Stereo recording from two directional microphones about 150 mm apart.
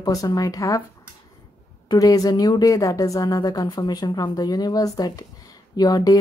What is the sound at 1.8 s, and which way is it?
Speech, 25° left (ahead or behind).